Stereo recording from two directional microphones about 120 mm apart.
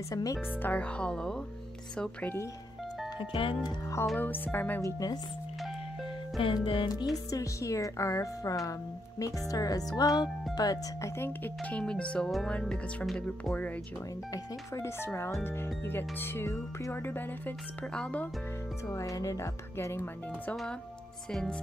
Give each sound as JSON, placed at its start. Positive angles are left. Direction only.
{"t": 0.1, "sound": "music", "side_deg": 30}
{"t": 0.6, "sound": "speech", "side_deg": 15}
{"t": 3.2, "sound": "music", "side_deg": 45}
{"t": 3.6, "sound": "music", "side_deg": 25}
{"t": 4.2, "sound": "speech", "side_deg": 15}
{"t": 4.8, "sound": "speech", "side_deg": 30}
{"t": 6.4, "sound": "music", "side_deg": 45}
{"t": 6.9, "sound": "music", "side_deg": 30}
{"t": 9.2, "sound": "speech", "side_deg": 30}
{"t": 11.1, "sound": "speech", "side_deg": 15}
{"t": 14.3, "sound": "music", "side_deg": 25}
{"t": 17.9, "sound": "speech", "side_deg": 10}
{"t": 18.9, "sound": "music", "side_deg": 25}
{"t": 21.3, "sound": "speech", "side_deg": 5}